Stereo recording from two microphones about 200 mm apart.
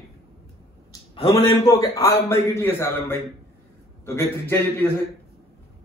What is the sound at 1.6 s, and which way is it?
A man's voice, 20° left (ahead or behind).